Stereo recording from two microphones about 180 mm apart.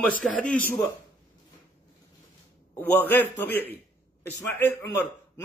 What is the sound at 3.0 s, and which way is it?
A man's voice, 10° left (ahead or behind).